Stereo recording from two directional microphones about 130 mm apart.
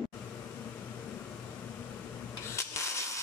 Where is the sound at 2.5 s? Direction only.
20° left (ahead or behind).